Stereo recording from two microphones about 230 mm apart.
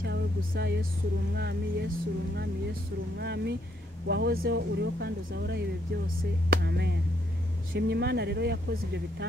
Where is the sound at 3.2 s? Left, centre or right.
Right.